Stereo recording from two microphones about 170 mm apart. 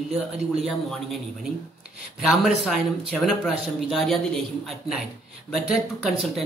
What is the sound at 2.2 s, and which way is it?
Speech, 5° right (ahead or behind).